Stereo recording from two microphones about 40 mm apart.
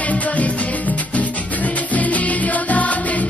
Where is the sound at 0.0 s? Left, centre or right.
Left.